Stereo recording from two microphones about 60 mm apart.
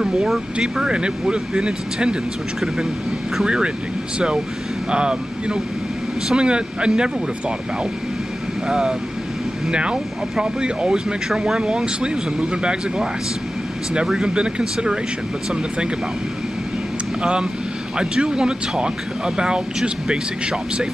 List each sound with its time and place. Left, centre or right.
0.0 s speech: centre
3.4 s speech: centre
4.9 s speech: centre
8.6 s speech: centre
17.2 s speech: centre